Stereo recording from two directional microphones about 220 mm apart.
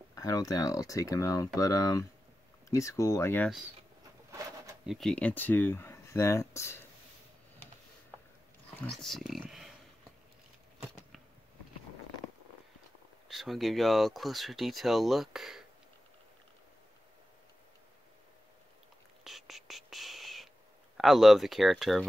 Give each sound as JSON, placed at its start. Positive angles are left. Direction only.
{"t": 0.1, "sound": "speech", "side_deg": 15}
{"t": 4.8, "sound": "speech", "side_deg": 0}
{"t": 8.7, "sound": "speech", "side_deg": 5}
{"t": 13.3, "sound": "speech", "side_deg": 0}
{"t": 19.2, "sound": "whispering", "side_deg": 0}
{"t": 21.0, "sound": "speech", "side_deg": 0}